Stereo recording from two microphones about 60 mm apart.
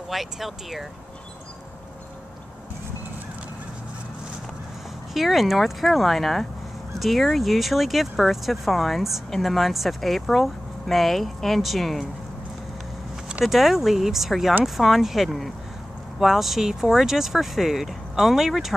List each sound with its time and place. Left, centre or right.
0.1 s speech: centre
5.1 s speech: centre
13.3 s speech: centre